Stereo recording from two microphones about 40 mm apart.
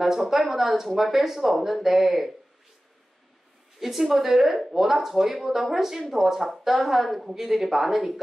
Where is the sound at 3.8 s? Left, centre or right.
Centre.